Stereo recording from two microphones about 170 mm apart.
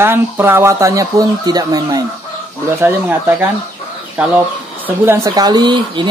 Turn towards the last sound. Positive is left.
turn(degrees=-25)  # may be behind; listen again after turning